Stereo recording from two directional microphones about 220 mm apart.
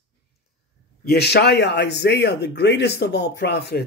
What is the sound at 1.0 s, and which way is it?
Speech, 45° left (ahead or behind).